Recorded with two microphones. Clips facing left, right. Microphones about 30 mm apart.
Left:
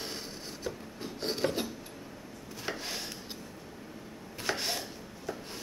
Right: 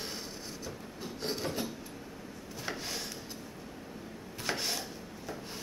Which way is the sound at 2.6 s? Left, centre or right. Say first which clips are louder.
Left 1 dB; centre.